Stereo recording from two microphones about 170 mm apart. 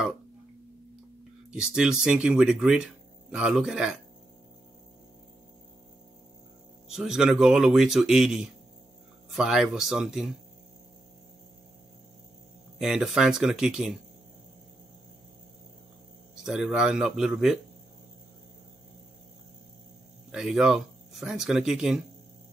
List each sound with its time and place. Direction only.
1.5 s speech: 5° right (ahead or behind)
6.9 s speech: 5° right (ahead or behind)
12.7 s speech: 5° right (ahead or behind)
16.3 s speech: 5° right (ahead or behind)
20.2 s speech: centre (ahead or behind)